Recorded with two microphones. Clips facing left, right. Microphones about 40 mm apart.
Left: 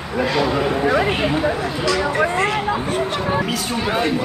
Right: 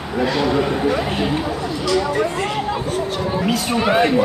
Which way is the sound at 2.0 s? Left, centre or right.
Left.